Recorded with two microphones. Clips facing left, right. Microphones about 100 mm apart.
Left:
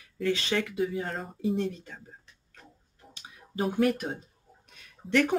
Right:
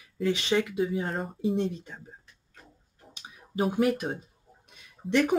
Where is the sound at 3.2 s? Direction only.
5° right (ahead or behind).